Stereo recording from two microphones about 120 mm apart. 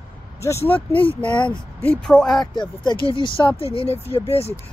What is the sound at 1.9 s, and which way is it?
Speech, 5° left (ahead or behind).